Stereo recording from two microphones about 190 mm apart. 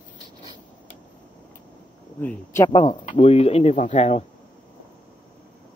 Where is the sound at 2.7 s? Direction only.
25° left (ahead or behind).